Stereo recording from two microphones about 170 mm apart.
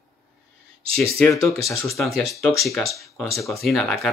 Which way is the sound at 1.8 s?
Centre (ahead or behind).